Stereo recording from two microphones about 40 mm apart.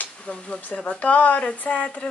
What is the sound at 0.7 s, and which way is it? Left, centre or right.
Speech, left.